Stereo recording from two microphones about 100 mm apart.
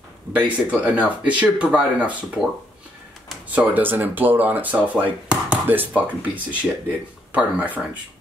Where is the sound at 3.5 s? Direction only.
15° right (ahead or behind).